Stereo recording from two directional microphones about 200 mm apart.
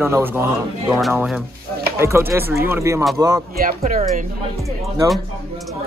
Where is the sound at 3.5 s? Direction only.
45° right (ahead or behind).